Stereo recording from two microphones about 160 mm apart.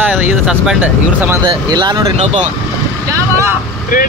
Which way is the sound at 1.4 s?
30° right (ahead or behind).